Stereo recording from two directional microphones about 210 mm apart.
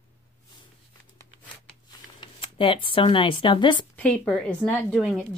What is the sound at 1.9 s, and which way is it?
Speech, 20° left (ahead or behind).